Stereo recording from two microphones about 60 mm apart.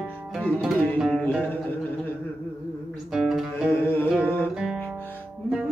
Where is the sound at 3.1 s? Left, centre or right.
Centre.